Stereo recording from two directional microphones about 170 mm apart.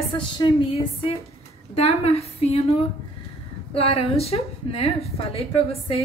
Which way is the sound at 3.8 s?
35° left (ahead or behind).